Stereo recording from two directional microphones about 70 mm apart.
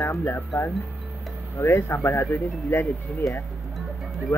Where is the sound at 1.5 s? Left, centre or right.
Left.